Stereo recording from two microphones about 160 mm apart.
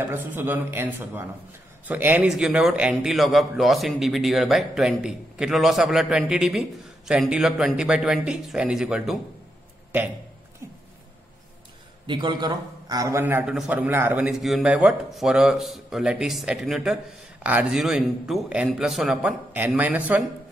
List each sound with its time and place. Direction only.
0.1 s a man's voice: 10° right (ahead or behind)
12.1 s a man's voice: 25° right (ahead or behind)
13.2 s a man's voice: 10° right (ahead or behind)